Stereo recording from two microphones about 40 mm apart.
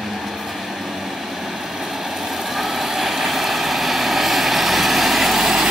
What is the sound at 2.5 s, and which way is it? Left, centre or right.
Vehicle, centre.